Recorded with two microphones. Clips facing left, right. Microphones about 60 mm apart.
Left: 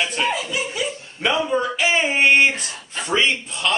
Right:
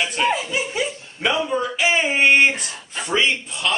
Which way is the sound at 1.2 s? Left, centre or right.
Centre.